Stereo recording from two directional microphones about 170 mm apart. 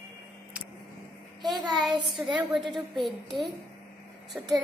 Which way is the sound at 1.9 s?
25° right (ahead or behind).